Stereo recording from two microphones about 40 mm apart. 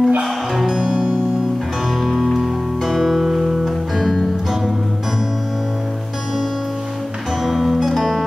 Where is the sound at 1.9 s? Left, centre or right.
Centre.